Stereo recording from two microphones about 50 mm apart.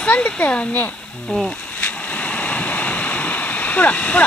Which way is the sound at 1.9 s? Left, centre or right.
Left.